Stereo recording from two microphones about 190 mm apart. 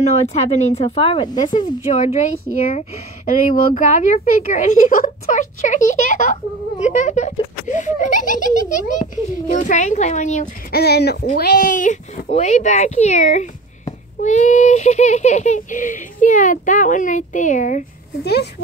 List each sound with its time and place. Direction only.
0.0 s speech: 35° left (ahead or behind)
1.9 s speech: 40° left (ahead or behind)
10.8 s speech: 60° left (ahead or behind); by 17.8 s 40° left (ahead or behind)
18.2 s speech: 60° left (ahead or behind)